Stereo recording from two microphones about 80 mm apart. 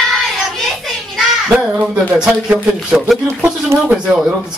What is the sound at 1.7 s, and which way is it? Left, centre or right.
Speech, centre.